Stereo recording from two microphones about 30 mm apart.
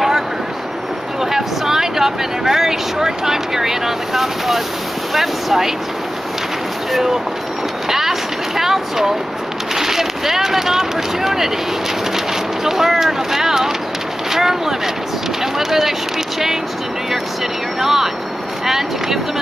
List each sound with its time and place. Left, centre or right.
1.2 s speech: centre
6.9 s speech: centre
7.9 s vehicle: centre
9.8 s speech: centre
12.6 s speech: centre
17.7 s speech: centre